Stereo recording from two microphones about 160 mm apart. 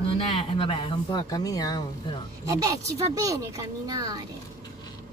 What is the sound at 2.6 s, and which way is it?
A woman's voice, 20° right (ahead or behind).